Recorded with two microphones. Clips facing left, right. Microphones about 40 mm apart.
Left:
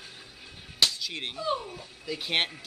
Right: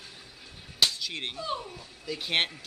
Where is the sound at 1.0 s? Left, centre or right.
Centre.